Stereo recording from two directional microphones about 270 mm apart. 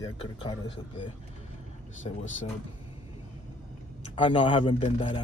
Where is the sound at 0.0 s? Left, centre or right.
Centre.